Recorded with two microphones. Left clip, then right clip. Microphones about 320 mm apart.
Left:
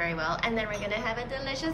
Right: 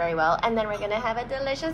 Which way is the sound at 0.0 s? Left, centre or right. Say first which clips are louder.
Right 6 dB; centre.